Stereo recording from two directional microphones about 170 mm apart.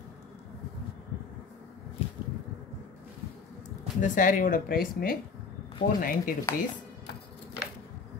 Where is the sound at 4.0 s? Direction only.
50° left (ahead or behind).